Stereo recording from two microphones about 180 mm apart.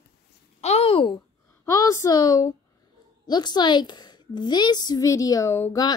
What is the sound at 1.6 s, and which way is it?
A woman's voice, 20° left (ahead or behind).